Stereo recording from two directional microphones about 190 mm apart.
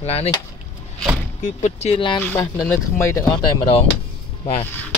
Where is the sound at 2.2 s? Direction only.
10° left (ahead or behind).